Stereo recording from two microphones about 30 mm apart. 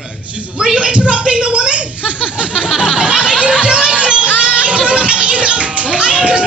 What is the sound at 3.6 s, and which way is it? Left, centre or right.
Music, right.